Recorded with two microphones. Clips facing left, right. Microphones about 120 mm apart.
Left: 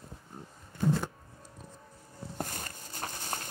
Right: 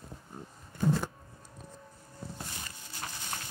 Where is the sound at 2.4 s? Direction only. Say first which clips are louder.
Left 6 dB; 50° left (ahead or behind).